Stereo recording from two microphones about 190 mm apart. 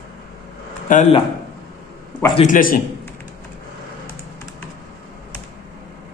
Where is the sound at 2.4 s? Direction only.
45° left (ahead or behind).